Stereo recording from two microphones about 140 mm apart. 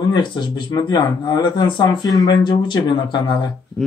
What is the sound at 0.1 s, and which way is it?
Speech, 35° left (ahead or behind).